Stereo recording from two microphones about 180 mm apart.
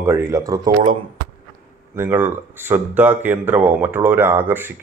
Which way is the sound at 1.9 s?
10° right (ahead or behind).